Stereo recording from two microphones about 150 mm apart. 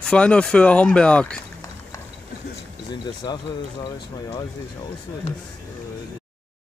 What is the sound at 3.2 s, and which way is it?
Speech, 30° left (ahead or behind).